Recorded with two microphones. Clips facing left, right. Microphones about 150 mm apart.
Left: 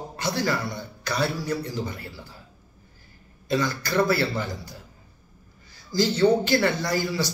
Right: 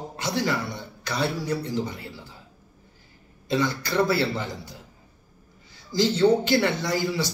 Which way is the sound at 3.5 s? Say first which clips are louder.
Even; 20° right (ahead or behind).